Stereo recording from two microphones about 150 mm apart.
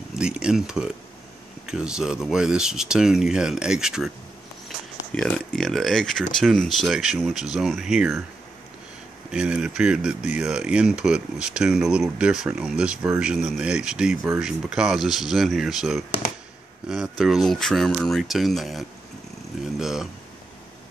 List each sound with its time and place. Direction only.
0.1 s speech: 5° right (ahead or behind)
9.3 s speech: 5° right (ahead or behind)
19.6 s a sound: centre (ahead or behind)